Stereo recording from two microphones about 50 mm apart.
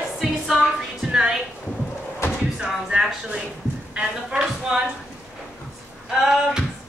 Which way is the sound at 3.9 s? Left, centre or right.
Centre.